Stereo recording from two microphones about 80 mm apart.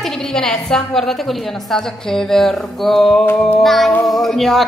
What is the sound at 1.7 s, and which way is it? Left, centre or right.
Music, centre.